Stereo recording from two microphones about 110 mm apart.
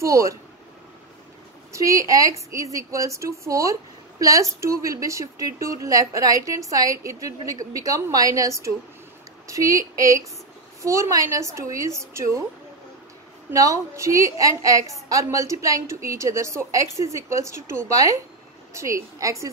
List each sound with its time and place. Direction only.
0.0 s a woman's voice: 30° right (ahead or behind)
1.7 s a woman's voice: 30° right (ahead or behind)
13.5 s a woman's voice: 30° right (ahead or behind)